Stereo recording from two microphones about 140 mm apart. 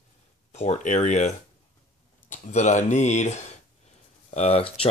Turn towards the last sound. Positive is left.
turn(degrees=45)  # may be behind; listen again after turning